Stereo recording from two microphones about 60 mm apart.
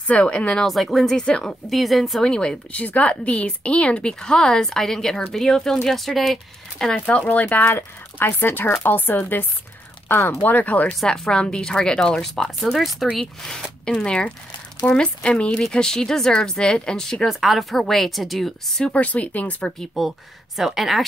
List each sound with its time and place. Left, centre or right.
0.0 s speech: left
0.7 s speech: centre
1.7 s speech: centre
2.7 s speech: left; by 6.9 s centre
6.9 s speech: left
7.7 s speech: left
10.9 s speech: centre
12.4 s speech: centre
18.9 s speech: left
20.0 s speech: centre